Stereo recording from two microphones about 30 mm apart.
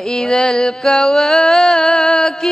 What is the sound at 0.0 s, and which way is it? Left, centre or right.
Mantra, centre.